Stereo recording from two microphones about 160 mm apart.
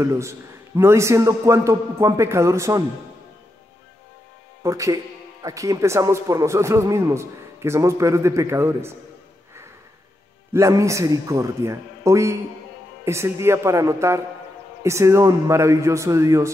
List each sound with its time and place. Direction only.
0.0 s a man's voice: 15° right (ahead or behind)
4.6 s a man's voice: 20° right (ahead or behind)
10.5 s a man's voice: 20° right (ahead or behind)